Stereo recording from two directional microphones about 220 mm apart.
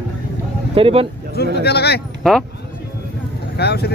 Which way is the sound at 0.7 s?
25° right (ahead or behind).